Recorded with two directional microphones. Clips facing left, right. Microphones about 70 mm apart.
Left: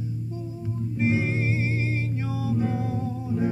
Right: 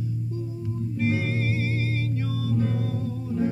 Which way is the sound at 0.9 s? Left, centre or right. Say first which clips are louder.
Left 2 dB; left.